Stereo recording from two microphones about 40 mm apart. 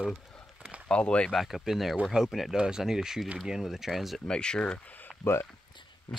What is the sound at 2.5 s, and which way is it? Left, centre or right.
Speech, centre.